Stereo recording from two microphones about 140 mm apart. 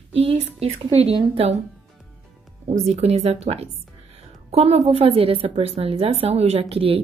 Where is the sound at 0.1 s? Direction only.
45° right (ahead or behind).